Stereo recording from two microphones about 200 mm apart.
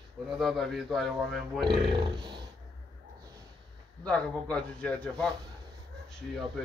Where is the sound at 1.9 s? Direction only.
25° right (ahead or behind).